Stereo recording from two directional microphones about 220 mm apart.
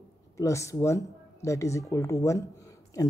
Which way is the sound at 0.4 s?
15° left (ahead or behind).